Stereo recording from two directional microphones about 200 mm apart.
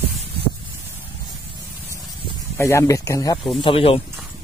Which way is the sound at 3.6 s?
30° left (ahead or behind).